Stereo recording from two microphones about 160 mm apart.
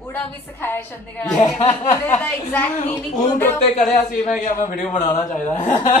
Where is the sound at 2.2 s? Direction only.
10° left (ahead or behind).